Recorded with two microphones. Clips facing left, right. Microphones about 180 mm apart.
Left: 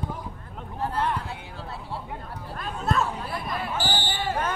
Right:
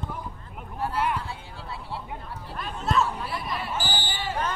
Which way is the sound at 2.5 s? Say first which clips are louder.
Right 1 dB; 50° left (ahead or behind).